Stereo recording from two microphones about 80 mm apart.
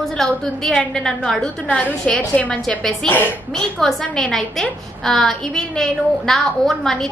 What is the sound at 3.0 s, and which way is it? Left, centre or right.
A woman's voice, centre.